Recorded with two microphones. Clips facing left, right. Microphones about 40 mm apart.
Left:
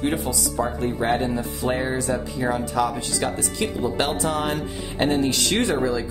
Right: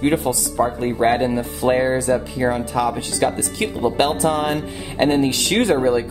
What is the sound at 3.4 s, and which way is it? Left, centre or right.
Speech, right.